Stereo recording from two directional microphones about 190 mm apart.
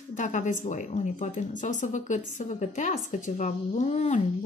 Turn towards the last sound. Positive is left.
turn(degrees=35)  # may be behind; listen again after turning